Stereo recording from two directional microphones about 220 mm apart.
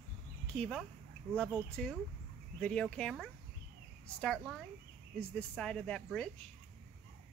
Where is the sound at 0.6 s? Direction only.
Centre (ahead or behind).